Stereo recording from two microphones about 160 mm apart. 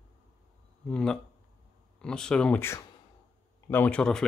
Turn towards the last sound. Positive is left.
turn(degrees=5)  # may be behind; listen again after turning